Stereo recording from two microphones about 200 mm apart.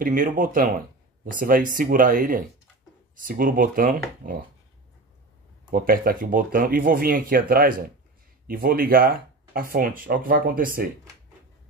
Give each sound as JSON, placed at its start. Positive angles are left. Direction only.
{"t": 0.0, "sound": "speech", "side_deg": -45}
{"t": 5.7, "sound": "speech", "side_deg": -45}